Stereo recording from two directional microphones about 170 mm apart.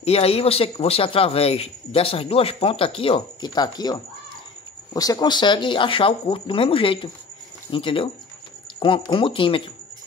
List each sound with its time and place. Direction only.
0.0 s speech: 35° left (ahead or behind)